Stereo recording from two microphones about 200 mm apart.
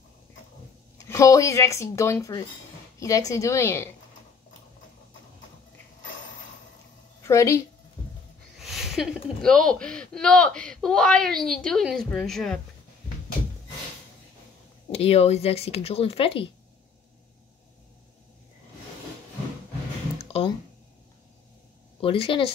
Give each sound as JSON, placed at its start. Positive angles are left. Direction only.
{"t": 0.9, "sound": "speech", "side_deg": 15}
{"t": 7.2, "sound": "speech", "side_deg": 15}
{"t": 8.5, "sound": "speech", "side_deg": 0}
{"t": 14.9, "sound": "speech", "side_deg": 30}
{"t": 20.2, "sound": "a sound", "side_deg": 30}
{"t": 22.0, "sound": "speech", "side_deg": 25}